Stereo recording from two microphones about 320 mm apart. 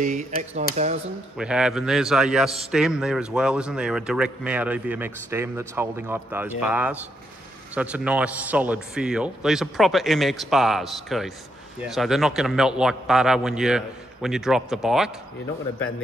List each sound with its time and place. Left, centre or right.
0.0 s speech: right
1.4 s speech: centre